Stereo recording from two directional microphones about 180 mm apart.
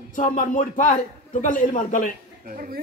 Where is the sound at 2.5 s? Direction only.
50° right (ahead or behind).